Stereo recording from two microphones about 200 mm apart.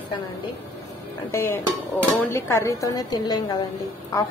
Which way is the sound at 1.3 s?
10° left (ahead or behind).